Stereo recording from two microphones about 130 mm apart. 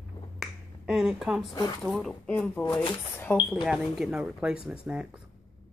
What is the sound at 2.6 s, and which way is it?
Speech, 15° left (ahead or behind).